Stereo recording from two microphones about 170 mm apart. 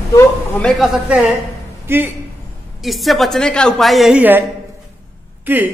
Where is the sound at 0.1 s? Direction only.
15° left (ahead or behind).